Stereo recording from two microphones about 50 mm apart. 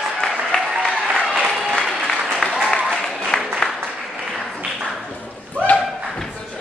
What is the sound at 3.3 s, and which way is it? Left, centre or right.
Applause, centre.